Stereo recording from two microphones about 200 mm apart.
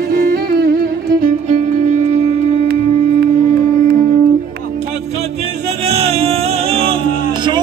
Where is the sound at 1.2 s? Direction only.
35° right (ahead or behind).